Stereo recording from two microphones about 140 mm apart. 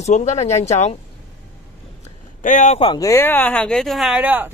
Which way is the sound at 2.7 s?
35° left (ahead or behind).